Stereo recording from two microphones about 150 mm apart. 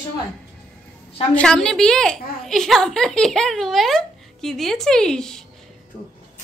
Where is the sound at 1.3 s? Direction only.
5° left (ahead or behind).